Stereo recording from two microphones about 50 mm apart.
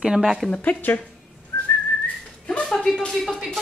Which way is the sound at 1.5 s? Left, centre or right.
Left.